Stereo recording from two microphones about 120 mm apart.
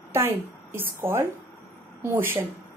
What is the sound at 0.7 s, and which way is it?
A woman's voice, 20° right (ahead or behind).